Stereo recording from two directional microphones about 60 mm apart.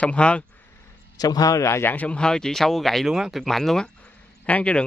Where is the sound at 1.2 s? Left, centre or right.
Left.